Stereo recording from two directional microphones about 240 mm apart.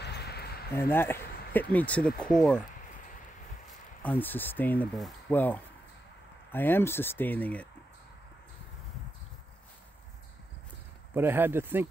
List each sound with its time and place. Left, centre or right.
0.0 s a sound: left
0.7 s speech: centre
4.0 s speech: centre
11.1 s speech: centre